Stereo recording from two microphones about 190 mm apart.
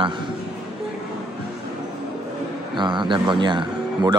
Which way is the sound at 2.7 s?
25° right (ahead or behind).